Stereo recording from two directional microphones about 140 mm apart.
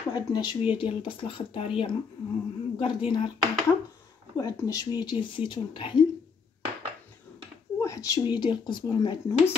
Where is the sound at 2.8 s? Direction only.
40° left (ahead or behind).